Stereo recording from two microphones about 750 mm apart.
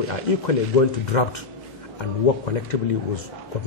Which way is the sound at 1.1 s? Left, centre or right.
Left.